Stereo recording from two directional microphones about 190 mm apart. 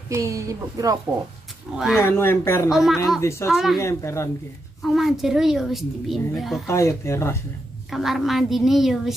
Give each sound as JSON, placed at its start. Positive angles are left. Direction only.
{"t": 0.1, "sound": "speech", "side_deg": -15}
{"t": 2.0, "sound": "speech", "side_deg": 10}
{"t": 2.7, "sound": "a woman's voice", "side_deg": 0}
{"t": 3.2, "sound": "speech", "side_deg": 15}
{"t": 3.4, "sound": "a woman's voice", "side_deg": 0}
{"t": 3.8, "sound": "speech", "side_deg": 15}
{"t": 4.8, "sound": "a woman's voice", "side_deg": 0}
{"t": 6.7, "sound": "speech", "side_deg": 15}
{"t": 7.9, "sound": "a woman's voice", "side_deg": 0}